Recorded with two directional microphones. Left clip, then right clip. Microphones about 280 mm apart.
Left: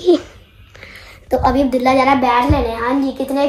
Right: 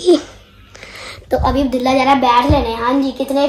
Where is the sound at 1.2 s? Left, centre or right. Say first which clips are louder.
Left 1 dB; centre.